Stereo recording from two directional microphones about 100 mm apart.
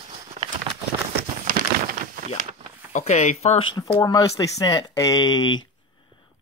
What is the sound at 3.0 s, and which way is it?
Speech, 90° left.